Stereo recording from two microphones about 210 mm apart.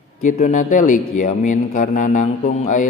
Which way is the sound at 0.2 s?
40° left (ahead or behind).